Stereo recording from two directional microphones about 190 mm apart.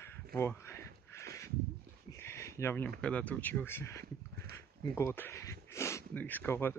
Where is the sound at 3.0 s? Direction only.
5° left (ahead or behind).